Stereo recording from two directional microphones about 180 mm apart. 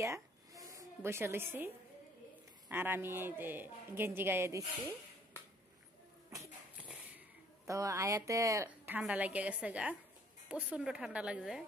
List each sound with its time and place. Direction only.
0.0 s a sound: 15° right (ahead or behind)
2.7 s a woman's voice: 10° right (ahead or behind)
6.3 s shuffle: 15° right (ahead or behind)
7.6 s a woman's voice: 15° right (ahead or behind)